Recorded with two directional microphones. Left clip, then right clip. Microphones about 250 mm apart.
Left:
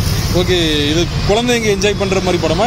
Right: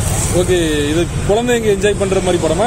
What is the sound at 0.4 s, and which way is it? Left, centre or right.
Speech, centre.